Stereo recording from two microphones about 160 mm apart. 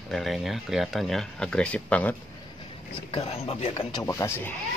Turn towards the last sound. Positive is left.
turn(degrees=15)  # may be behind; listen again after turning